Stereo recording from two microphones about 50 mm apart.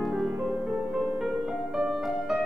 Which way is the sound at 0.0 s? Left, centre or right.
Centre.